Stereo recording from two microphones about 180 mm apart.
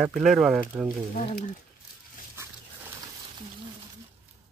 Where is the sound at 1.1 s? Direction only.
45° left (ahead or behind).